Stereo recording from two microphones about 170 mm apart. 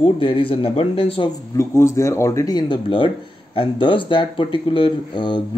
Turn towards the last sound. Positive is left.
turn(degrees=30)  # may be behind; listen again after turning